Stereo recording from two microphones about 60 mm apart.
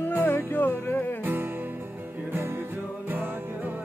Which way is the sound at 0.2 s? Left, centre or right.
Left.